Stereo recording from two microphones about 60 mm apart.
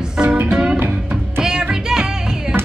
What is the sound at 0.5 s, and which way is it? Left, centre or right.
Music, centre.